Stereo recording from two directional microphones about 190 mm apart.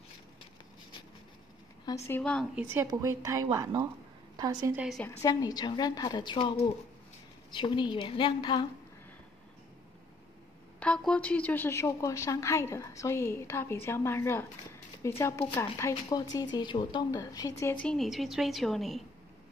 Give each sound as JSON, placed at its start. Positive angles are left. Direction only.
{"t": 2.0, "sound": "a woman's voice", "side_deg": 10}
{"t": 2.5, "sound": "a woman's voice", "side_deg": -10}
{"t": 4.7, "sound": "a woman's voice", "side_deg": 0}
{"t": 5.0, "sound": "a woman's voice", "side_deg": 20}
{"t": 7.5, "sound": "a woman's voice", "side_deg": 25}
{"t": 10.8, "sound": "a woman's voice", "side_deg": 5}
{"t": 17.8, "sound": "a woman's voice", "side_deg": 0}